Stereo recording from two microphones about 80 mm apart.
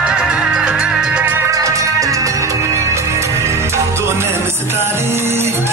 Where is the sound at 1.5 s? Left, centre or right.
Right.